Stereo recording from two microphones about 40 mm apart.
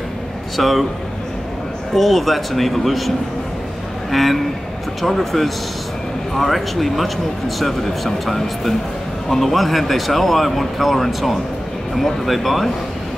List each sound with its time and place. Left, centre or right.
0.6 s speech: centre
2.0 s speech: centre
4.1 s speech: centre